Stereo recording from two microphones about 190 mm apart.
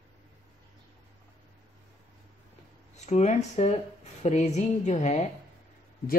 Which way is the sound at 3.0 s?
35° left (ahead or behind).